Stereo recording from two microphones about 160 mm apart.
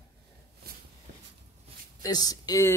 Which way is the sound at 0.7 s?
70° right (ahead or behind).